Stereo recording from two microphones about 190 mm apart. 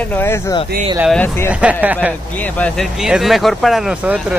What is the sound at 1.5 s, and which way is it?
Speech, 5° right (ahead or behind).